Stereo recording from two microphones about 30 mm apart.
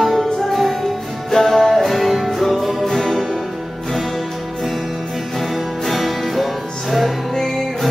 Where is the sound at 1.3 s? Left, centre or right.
Centre.